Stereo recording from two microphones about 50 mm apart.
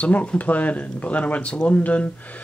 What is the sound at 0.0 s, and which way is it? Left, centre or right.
Speech, left.